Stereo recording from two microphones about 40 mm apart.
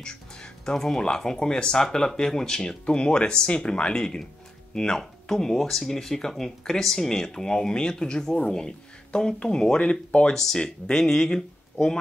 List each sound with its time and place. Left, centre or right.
0.0 s music: centre
0.7 s speech: centre
5.3 s speech: centre